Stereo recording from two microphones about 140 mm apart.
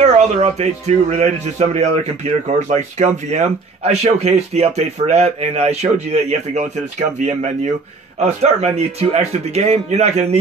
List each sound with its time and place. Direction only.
0.0 s speech: 55° right (ahead or behind)